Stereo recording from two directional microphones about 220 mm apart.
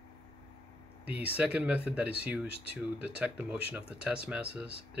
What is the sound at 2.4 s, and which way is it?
Speech, 25° left (ahead or behind).